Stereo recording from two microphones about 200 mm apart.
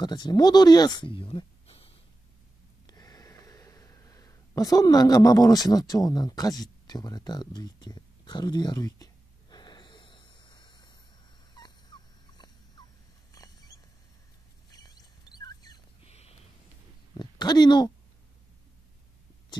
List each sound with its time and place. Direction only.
0.0 s speech: 20° left (ahead or behind)
2.9 s a sound: 20° left (ahead or behind)
11.5 s dog: 20° left (ahead or behind)
13.3 s rodents: 15° left (ahead or behind)
16.1 s a sound: 30° left (ahead or behind)
17.1 s speech: 20° left (ahead or behind)